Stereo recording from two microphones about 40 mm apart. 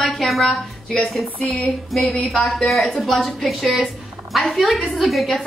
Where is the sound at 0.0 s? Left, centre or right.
Centre.